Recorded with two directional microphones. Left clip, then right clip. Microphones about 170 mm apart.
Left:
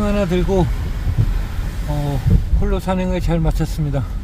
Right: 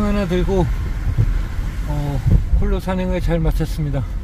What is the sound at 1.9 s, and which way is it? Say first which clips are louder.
Speech: left 2 dB; 10° left (ahead or behind).